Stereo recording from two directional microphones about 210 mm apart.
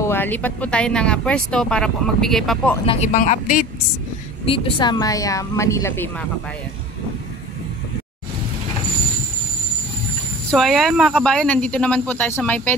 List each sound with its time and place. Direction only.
0.0 s speech: 10° left (ahead or behind)
2.9 s speech: 35° left (ahead or behind)
4.5 s speech: 25° left (ahead or behind)
10.5 s speech: centre (ahead or behind)